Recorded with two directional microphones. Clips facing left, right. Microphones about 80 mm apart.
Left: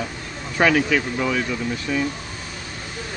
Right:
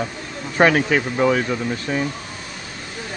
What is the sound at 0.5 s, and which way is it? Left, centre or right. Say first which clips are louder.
Speech: right 2 dB; right.